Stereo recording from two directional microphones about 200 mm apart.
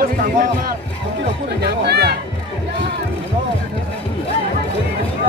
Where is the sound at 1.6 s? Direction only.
55° right (ahead or behind).